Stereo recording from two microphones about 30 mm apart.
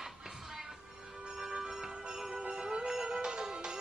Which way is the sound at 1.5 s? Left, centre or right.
Right.